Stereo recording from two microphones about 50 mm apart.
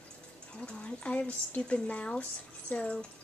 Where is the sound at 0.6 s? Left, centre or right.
Left.